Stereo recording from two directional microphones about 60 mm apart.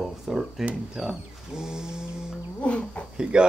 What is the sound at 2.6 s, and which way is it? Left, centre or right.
Speech, left.